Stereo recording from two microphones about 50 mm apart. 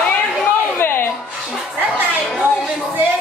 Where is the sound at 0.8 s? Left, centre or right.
Left.